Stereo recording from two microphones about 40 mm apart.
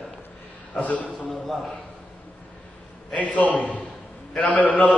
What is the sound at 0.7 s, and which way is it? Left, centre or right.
Speech, left.